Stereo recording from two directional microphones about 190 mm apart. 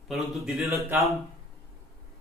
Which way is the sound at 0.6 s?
15° right (ahead or behind).